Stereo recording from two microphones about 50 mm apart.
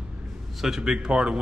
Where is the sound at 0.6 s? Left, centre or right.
Centre.